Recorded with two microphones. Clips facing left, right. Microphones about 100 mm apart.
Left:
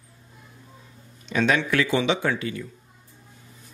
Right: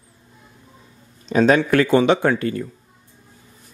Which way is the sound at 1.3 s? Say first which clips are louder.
Right 7 dB; 35° right (ahead or behind).